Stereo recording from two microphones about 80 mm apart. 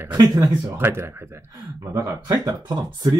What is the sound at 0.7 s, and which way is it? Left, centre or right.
Speech, right.